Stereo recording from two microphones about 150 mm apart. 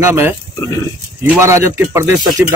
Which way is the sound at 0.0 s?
15° right (ahead or behind).